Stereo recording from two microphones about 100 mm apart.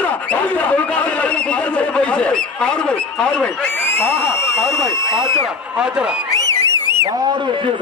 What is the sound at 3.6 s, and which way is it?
Speech, 20° left (ahead or behind).